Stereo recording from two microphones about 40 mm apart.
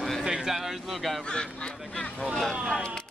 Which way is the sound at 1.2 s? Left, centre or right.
Left.